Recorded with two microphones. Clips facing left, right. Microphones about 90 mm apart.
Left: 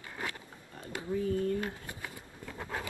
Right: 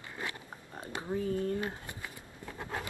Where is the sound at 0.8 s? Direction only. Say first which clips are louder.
Even; 25° right (ahead or behind).